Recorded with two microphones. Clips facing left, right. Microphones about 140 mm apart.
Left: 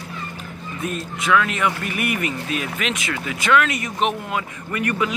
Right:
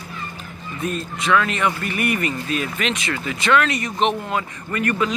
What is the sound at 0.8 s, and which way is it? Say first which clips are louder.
Speech: right 2 dB; 5° left (ahead or behind).